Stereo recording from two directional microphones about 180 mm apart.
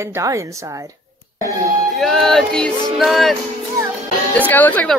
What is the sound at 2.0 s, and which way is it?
Music, centre (ahead or behind).